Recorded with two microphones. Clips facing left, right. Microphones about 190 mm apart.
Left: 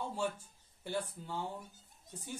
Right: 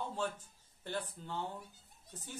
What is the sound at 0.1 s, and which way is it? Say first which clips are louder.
Speech: left 2 dB; 10° left (ahead or behind).